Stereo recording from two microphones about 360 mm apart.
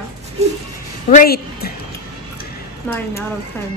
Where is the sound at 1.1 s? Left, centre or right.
Left.